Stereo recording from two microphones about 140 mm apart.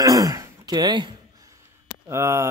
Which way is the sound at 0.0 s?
25° right (ahead or behind).